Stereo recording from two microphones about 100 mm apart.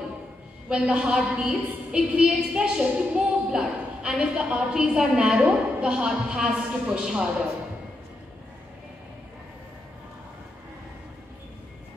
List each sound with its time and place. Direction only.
0.7 s a woman's voice: 10° right (ahead or behind)